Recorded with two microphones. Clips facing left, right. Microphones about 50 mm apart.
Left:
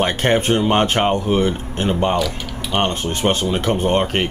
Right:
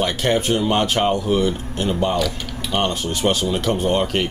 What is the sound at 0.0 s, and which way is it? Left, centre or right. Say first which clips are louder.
Speech: left 2 dB; left.